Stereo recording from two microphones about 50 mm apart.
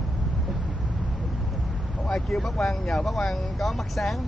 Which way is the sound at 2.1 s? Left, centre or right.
Centre.